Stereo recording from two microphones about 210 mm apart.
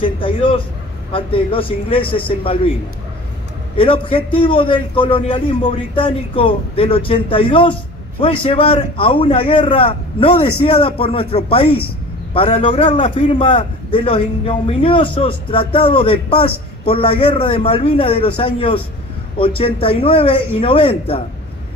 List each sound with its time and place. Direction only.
0.0 s a sound: 25° left (ahead or behind)
1.1 s a man's voice: 25° left (ahead or behind)
3.7 s a man's voice: 25° left (ahead or behind)